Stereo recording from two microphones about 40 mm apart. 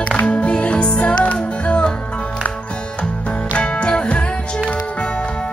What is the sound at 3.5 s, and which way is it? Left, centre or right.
Music, left.